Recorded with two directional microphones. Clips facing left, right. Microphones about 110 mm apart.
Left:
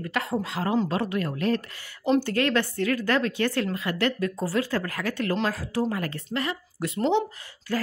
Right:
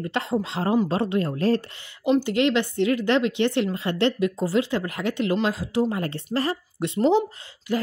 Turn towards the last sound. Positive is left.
turn(degrees=-20)  # may be behind; listen again after turning